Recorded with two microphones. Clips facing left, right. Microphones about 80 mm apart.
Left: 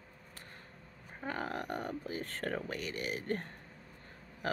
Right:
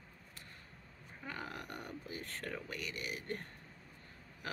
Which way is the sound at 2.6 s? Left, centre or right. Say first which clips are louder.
Left 5 dB; left.